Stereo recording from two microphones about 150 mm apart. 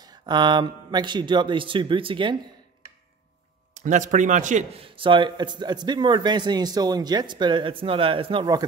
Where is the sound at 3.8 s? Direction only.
55° right (ahead or behind).